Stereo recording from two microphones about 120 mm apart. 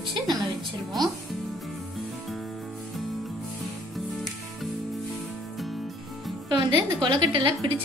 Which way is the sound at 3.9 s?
Centre (ahead or behind).